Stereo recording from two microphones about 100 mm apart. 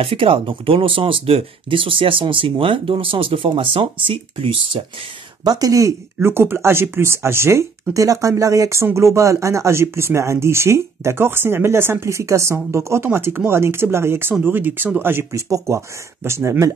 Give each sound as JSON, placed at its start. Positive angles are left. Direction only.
{"t": 0.0, "sound": "speech", "side_deg": -65}
{"t": 5.4, "sound": "speech", "side_deg": -40}